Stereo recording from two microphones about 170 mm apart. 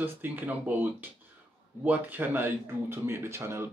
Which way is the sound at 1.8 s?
10° right (ahead or behind).